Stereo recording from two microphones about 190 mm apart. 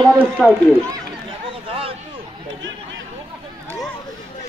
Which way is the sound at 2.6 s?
80° right.